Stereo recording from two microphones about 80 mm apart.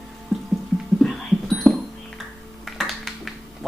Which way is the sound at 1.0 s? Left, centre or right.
Centre.